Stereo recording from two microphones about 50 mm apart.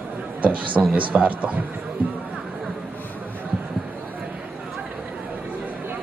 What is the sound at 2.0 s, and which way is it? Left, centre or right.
Speech, right.